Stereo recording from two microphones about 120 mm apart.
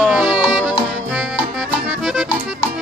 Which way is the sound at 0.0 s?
10° right (ahead or behind).